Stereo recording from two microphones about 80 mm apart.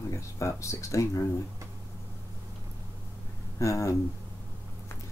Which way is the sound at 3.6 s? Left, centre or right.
Left.